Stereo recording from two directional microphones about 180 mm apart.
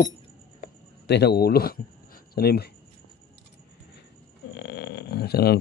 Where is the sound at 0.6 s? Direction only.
65° left (ahead or behind).